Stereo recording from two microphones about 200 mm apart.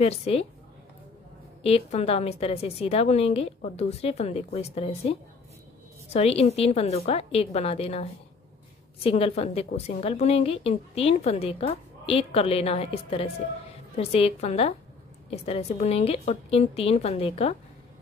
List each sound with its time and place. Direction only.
0.0 s a woman's voice: 30° left (ahead or behind)
1.6 s a woman's voice: 30° left (ahead or behind)
6.1 s a woman's voice: 30° left (ahead or behind)